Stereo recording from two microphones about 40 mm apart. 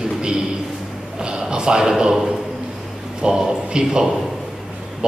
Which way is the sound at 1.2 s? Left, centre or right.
Right.